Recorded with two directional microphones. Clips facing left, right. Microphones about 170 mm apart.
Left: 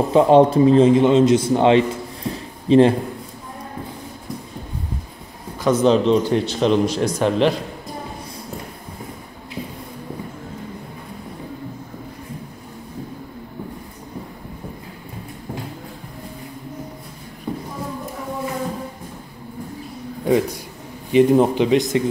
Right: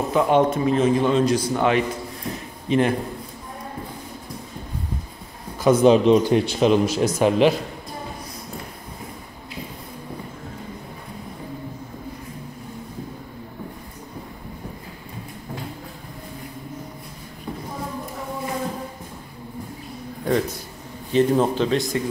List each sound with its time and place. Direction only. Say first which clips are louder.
0.1 s a man's voice: left 6 dB; 30° left (ahead or behind)
5.6 s a man's voice: right 1 dB; 10° right (ahead or behind)
17.5 s music: left 5 dB; 20° left (ahead or behind)
20.2 s a sound: left 4 dB; 10° left (ahead or behind)
21.1 s speech: left 4 dB; 15° left (ahead or behind)